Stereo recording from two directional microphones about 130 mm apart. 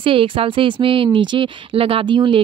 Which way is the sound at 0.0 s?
45° right (ahead or behind).